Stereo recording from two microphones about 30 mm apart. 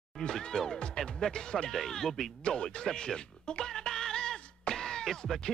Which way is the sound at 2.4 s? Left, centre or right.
Left.